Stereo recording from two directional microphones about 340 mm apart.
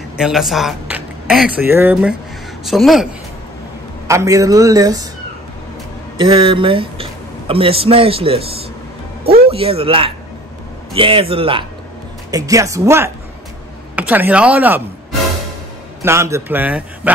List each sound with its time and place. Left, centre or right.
0.2 s speech: centre
4.1 s a man's voice: centre
6.1 s a man's voice: centre
16.0 s a man's voice: centre